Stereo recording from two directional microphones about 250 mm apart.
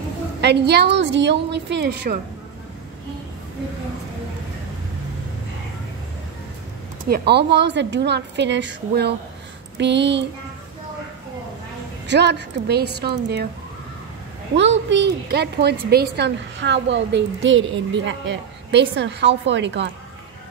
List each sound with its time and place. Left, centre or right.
0.4 s a woman's voice: right
7.1 s a woman's voice: right
12.1 s a woman's voice: right
14.5 s a woman's voice: right